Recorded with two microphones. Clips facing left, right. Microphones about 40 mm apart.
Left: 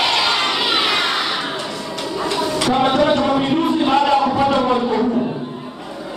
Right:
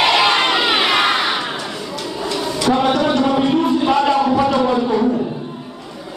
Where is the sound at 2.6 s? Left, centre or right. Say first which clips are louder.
Even; centre.